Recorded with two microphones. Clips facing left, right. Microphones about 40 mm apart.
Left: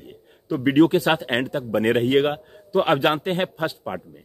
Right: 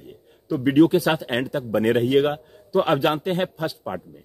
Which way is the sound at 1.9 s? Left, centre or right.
Left.